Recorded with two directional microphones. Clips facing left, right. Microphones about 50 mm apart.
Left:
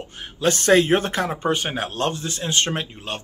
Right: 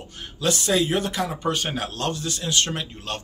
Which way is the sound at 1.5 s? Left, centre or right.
Left.